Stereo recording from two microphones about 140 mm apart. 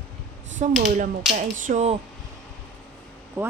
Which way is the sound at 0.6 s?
65° right (ahead or behind).